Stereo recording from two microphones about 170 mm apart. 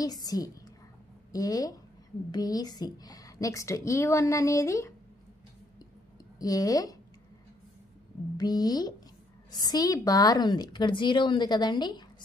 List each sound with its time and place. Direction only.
0.0 s a woman's voice: 20° left (ahead or behind)
6.4 s a woman's voice: 20° left (ahead or behind)
8.4 s a woman's voice: 25° left (ahead or behind)